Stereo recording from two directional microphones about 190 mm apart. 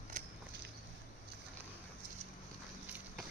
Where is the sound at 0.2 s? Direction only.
40° right (ahead or behind).